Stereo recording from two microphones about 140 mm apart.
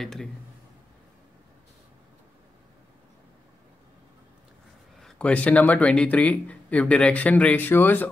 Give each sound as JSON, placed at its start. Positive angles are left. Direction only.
{"t": 0.0, "sound": "a man's voice", "side_deg": 0}
{"t": 5.0, "sound": "speech", "side_deg": 10}